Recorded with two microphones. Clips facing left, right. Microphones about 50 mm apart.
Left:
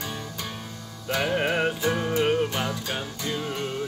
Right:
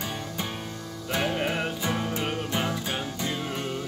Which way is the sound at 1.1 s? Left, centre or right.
Centre.